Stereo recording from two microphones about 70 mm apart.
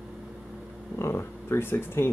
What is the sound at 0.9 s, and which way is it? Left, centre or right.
Speech, left.